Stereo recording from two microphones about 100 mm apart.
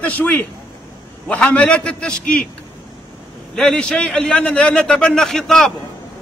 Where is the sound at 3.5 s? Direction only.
5° left (ahead or behind).